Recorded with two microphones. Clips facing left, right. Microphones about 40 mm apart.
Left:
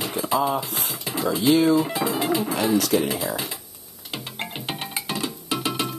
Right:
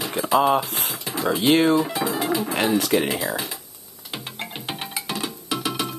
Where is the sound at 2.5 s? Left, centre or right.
Right.